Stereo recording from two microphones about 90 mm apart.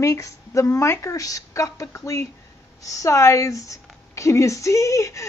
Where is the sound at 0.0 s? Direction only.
35° left (ahead or behind).